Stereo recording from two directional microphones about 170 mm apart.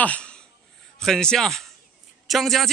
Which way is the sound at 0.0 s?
5° left (ahead or behind).